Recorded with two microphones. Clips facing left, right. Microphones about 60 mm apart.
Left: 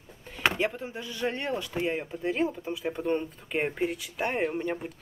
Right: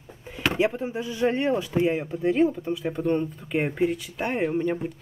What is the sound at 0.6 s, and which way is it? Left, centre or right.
Speech, centre.